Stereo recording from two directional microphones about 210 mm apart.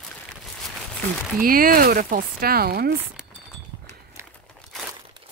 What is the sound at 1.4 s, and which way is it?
Speech, 45° right (ahead or behind).